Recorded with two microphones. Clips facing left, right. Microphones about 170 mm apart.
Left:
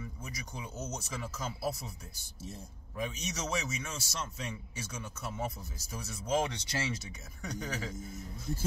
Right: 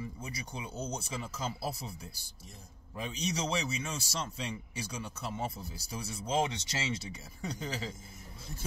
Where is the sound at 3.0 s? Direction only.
30° right (ahead or behind).